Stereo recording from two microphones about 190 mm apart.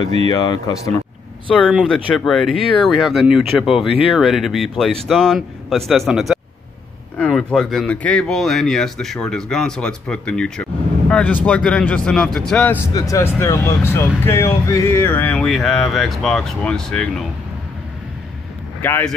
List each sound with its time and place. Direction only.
0.3 s speech: 20° left (ahead or behind)
1.5 s speech: centre (ahead or behind)
12.9 s speech: 15° left (ahead or behind)
18.8 s speech: 10° left (ahead or behind)